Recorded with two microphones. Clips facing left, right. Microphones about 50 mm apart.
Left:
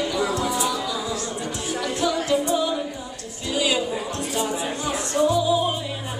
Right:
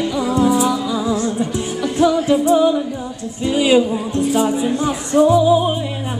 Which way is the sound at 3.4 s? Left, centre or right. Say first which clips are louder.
Right 9 dB; right.